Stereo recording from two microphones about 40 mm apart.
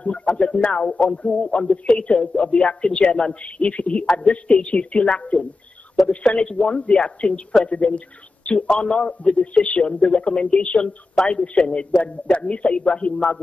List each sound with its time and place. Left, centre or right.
0.0 s a man's voice: left
8.7 s a man's voice: left